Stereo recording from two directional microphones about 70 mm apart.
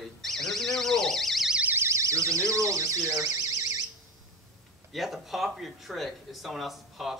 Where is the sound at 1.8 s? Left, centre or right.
Right.